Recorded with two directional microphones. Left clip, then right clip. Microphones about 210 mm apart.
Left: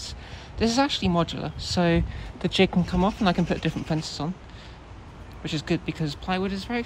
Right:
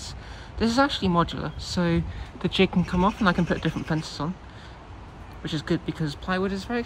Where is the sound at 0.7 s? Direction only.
Centre (ahead or behind).